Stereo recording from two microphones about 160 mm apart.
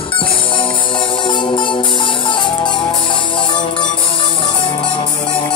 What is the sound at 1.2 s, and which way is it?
Music, 30° left (ahead or behind).